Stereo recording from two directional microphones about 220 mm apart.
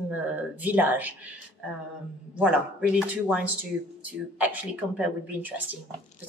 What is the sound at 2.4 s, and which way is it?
Speech, 5° right (ahead or behind).